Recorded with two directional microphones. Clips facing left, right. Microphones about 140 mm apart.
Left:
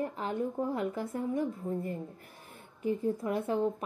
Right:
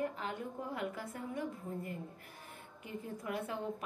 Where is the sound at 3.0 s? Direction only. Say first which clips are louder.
Left 9 dB; 35° left (ahead or behind).